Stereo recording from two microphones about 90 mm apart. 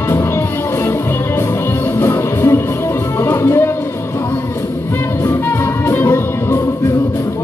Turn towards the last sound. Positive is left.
turn(degrees=25)  # may be behind; listen again after turning